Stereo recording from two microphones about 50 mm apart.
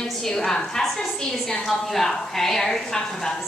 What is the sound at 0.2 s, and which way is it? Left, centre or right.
A woman's voice, centre.